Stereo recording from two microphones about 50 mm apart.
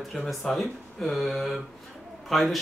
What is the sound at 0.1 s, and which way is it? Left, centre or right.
Speech, centre.